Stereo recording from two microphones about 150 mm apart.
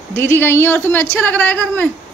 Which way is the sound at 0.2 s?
15° left (ahead or behind).